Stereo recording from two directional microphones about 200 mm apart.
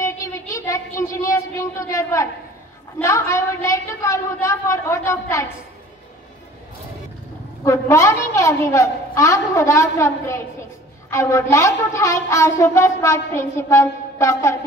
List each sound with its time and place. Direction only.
0.0 s child singing: 15° left (ahead or behind)
3.0 s a woman's voice: 15° left (ahead or behind)
7.6 s a woman's voice: 15° left (ahead or behind)